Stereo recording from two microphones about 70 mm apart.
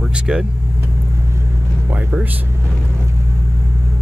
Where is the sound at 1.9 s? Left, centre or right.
Centre.